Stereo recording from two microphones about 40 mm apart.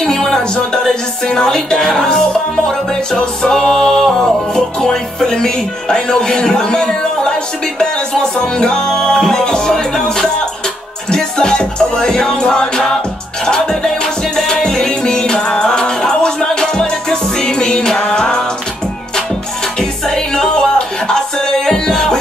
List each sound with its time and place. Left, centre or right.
0.0 s music: centre
8.4 s music: centre
19.8 s music: centre